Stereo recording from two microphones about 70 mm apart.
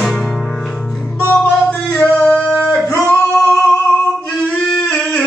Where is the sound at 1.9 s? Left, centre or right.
Centre.